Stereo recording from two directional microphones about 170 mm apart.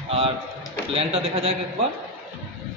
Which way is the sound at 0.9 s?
35° right (ahead or behind).